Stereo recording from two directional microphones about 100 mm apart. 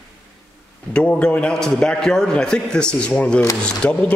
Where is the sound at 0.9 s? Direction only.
10° left (ahead or behind).